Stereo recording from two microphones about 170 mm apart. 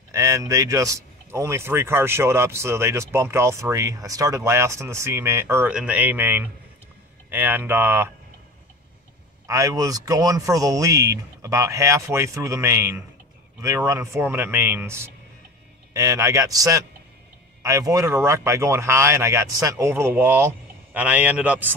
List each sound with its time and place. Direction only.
0.1 s speech: 20° right (ahead or behind)
9.5 s speech: 20° right (ahead or behind)